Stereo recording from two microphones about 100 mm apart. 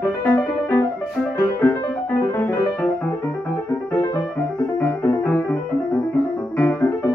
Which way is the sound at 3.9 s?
25° left (ahead or behind).